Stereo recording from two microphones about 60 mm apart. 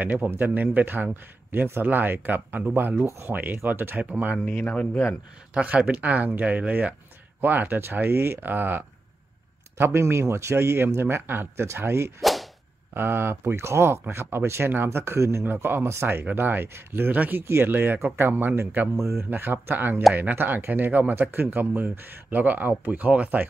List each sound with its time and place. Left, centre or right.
0.0 s a man's voice: right
3.1 s speech: right
3.3 s a man's voice: right
4.0 s speech: right
4.6 s speech: left
5.5 s a man's voice: right
9.8 s speech: right
12.2 s whip: centre
12.9 s speech: right
15.4 s a man's voice: right
18.9 s speech: right
19.4 s a man's voice: right